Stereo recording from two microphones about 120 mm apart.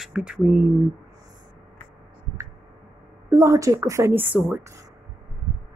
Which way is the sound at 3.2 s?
25° right (ahead or behind).